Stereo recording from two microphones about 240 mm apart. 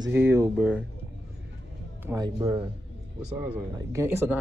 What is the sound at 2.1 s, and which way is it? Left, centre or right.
Speech, centre.